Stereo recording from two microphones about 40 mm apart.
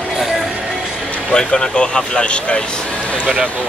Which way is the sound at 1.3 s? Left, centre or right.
Centre.